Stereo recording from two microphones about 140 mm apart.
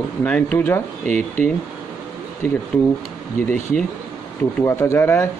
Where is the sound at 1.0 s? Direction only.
60° right (ahead or behind).